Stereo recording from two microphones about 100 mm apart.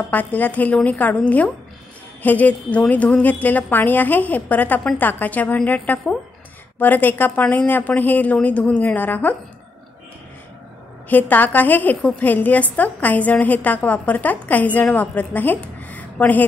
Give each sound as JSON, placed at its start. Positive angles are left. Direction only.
{"t": 0.1, "sound": "a woman's voice", "side_deg": 15}
{"t": 11.1, "sound": "a woman's voice", "side_deg": 15}